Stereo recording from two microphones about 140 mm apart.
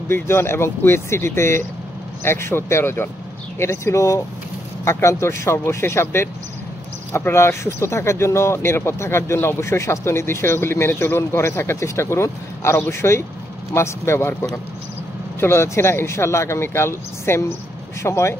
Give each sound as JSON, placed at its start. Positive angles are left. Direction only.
{"t": 0.1, "sound": "speech", "side_deg": 15}